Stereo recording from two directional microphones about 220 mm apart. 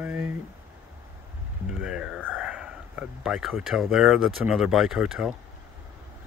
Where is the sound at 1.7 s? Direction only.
5° right (ahead or behind).